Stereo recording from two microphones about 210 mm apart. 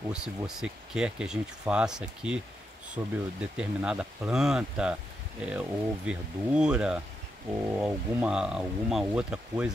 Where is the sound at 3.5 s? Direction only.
5° right (ahead or behind).